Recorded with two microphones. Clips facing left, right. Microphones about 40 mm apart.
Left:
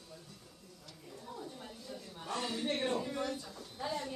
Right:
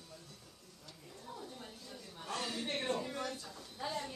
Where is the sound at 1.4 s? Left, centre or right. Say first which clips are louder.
Left 2 dB; centre.